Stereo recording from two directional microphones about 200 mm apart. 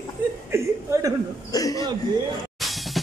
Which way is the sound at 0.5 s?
15° right (ahead or behind).